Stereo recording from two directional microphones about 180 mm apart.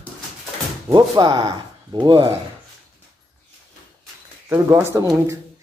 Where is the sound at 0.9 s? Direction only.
25° right (ahead or behind).